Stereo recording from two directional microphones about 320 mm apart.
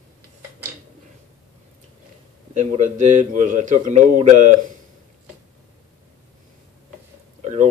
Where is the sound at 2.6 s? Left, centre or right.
Right.